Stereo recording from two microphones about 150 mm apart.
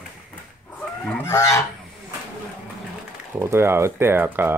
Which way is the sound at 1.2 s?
20° left (ahead or behind).